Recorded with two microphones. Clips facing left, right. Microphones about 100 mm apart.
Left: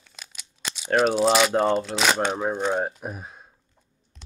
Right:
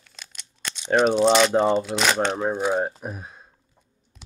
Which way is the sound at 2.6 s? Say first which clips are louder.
Right 1 dB; 5° right (ahead or behind).